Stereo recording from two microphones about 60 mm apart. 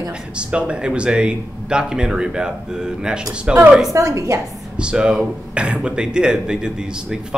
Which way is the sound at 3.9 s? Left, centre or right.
Right.